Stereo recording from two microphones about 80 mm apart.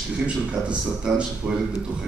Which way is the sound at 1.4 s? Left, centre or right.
Centre.